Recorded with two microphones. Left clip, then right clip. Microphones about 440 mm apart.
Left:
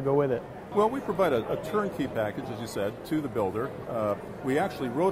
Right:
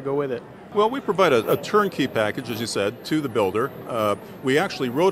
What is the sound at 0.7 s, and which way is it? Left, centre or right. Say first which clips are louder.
Speech: right 5 dB; right.